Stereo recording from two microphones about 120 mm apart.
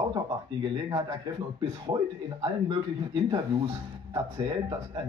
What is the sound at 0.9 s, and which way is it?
A man's voice, 30° right (ahead or behind).